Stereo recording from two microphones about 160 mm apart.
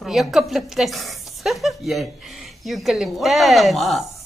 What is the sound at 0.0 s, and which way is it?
A woman's voice, centre (ahead or behind).